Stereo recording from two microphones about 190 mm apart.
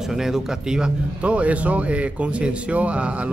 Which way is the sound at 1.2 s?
5° right (ahead or behind).